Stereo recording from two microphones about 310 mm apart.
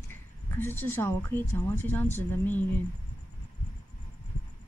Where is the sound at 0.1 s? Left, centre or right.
Centre.